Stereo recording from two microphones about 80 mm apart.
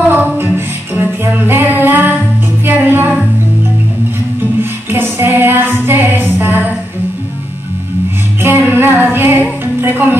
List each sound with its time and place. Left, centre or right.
0.1 s music: right
4.6 s music: right
8.4 s music: right